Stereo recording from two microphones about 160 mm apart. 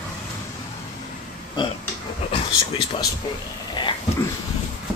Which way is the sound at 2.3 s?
35° left (ahead or behind).